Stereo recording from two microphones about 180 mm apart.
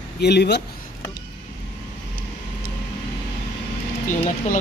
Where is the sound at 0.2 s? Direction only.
65° left (ahead or behind).